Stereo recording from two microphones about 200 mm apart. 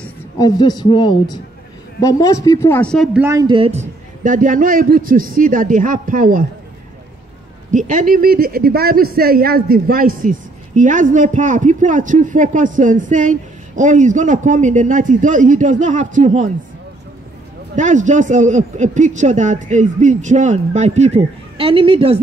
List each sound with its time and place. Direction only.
0.4 s speech: 20° left (ahead or behind); by 3.2 s 5° left (ahead or behind)
3.2 s a woman's voice: 15° right (ahead or behind)
4.2 s a man's voice: 40° right (ahead or behind)
7.7 s speech: 40° right (ahead or behind)
17.7 s speech: 40° right (ahead or behind)